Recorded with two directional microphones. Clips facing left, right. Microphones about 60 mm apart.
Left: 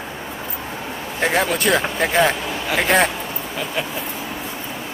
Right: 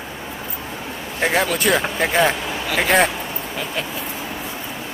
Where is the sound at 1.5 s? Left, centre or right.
Centre.